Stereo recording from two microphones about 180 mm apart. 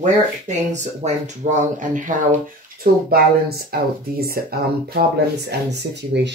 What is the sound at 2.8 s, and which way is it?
Speech, 60° right (ahead or behind).